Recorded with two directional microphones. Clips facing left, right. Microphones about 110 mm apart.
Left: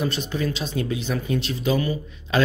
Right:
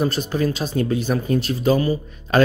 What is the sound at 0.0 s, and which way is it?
Speech, 40° right (ahead or behind).